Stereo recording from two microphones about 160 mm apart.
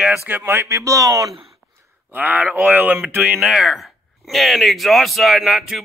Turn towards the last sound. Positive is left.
turn(degrees=0)  # may be behind; listen again after turning